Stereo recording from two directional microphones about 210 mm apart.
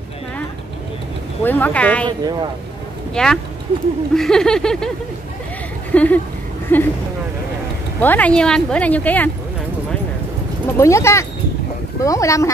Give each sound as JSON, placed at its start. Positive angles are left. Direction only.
{"t": 1.4, "sound": "speech", "side_deg": 10}
{"t": 2.0, "sound": "a woman's voice", "side_deg": -20}
{"t": 3.2, "sound": "a sound", "side_deg": 5}
{"t": 5.9, "sound": "speech", "side_deg": 10}
{"t": 8.0, "sound": "speech", "side_deg": 10}
{"t": 10.8, "sound": "speech", "side_deg": 15}